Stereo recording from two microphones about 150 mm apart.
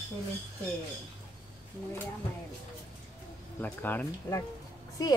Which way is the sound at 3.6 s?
10° left (ahead or behind).